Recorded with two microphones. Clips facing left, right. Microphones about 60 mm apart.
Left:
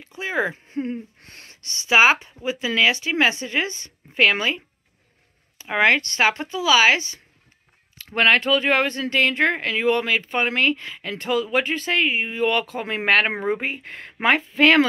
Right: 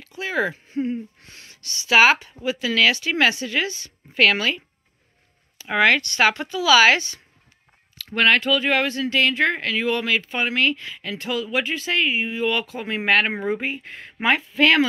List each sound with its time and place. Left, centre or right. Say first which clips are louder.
0.0 s a sound: even; left
1.2 s gasp: left 1 dB; left
1.6 s speech: even; left
8.0 s speech: even; left